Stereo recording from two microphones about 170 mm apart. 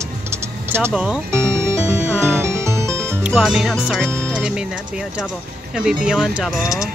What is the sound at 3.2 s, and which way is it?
Speech, 5° right (ahead or behind).